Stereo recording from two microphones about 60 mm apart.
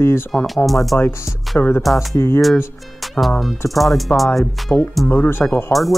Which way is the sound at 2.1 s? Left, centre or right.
Left.